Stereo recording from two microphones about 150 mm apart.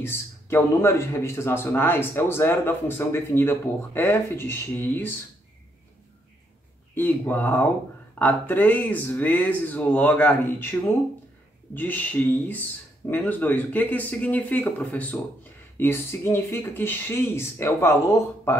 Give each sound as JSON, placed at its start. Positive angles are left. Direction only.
{"t": 0.0, "sound": "a man's voice", "side_deg": 15}
{"t": 7.0, "sound": "a man's voice", "side_deg": 10}